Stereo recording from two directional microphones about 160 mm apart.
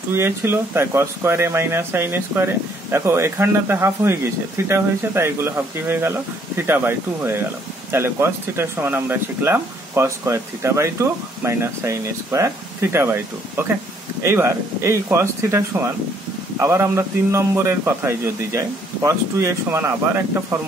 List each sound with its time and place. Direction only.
0.1 s speech: 15° right (ahead or behind)